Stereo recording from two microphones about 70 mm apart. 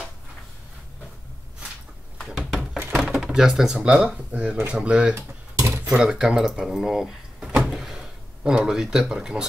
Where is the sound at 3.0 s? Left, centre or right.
Centre.